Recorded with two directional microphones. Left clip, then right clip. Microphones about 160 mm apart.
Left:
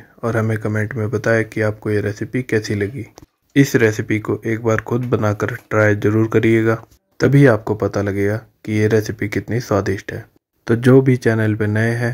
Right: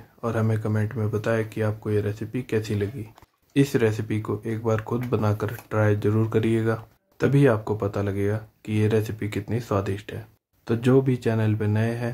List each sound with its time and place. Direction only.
0.2 s speech: 30° left (ahead or behind)